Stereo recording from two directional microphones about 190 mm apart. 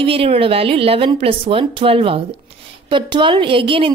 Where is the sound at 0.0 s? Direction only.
30° right (ahead or behind).